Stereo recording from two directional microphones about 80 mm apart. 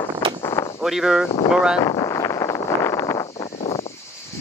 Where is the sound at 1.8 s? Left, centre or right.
Left.